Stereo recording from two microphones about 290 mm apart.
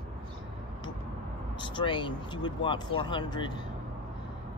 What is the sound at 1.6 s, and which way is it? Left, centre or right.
Speech, centre.